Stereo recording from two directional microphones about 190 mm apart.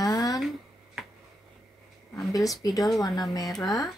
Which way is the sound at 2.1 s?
20° left (ahead or behind).